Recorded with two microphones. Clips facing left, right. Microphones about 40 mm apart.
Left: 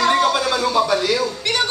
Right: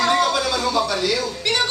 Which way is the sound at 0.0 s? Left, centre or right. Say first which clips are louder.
Left 2 dB; centre.